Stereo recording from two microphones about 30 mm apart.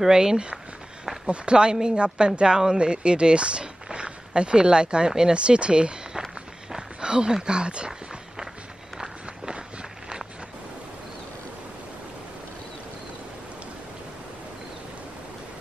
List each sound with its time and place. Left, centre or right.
0.1 s speech: right
1.2 s speech: right
2.8 s speech: right
7.0 s a sound: right
7.4 s speech: right